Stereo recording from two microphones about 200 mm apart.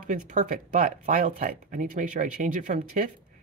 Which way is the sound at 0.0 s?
40° right (ahead or behind).